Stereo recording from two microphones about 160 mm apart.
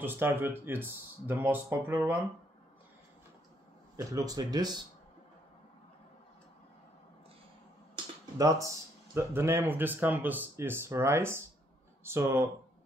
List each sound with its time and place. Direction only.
0.0 s speech: 15° right (ahead or behind)
3.9 s speech: 20° right (ahead or behind)
8.4 s speech: 20° right (ahead or behind)